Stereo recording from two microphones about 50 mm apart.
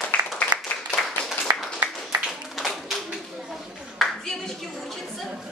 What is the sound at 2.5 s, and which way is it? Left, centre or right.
Tap, centre.